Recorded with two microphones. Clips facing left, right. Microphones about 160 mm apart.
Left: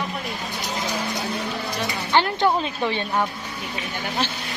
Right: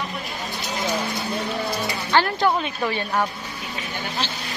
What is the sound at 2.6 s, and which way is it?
Speech, 25° left (ahead or behind).